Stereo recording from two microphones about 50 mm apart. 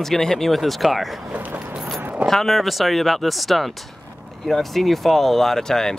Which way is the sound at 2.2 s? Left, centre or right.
Centre.